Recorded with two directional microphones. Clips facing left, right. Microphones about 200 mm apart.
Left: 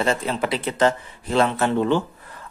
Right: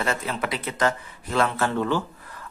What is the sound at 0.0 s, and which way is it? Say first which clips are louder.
Speech: left 5 dB; 25° left (ahead or behind).